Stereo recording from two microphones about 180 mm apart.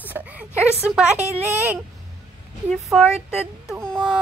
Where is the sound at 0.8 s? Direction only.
5° right (ahead or behind).